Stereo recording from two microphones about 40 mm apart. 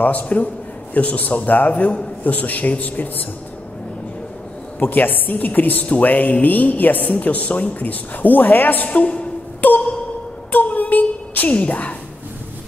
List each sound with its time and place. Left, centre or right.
0.0 s a man's voice: left
4.7 s a woman's voice: left
8.8 s a man's voice: left
9.6 s a sound: left
11.5 s a man's voice: left